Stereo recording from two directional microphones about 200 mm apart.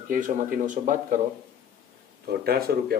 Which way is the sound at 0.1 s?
40° right (ahead or behind).